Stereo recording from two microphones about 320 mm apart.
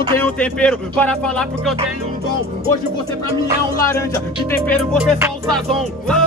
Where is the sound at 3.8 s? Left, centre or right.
Centre.